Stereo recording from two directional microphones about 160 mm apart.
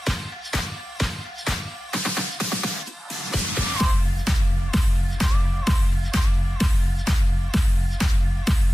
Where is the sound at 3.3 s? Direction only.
Centre (ahead or behind).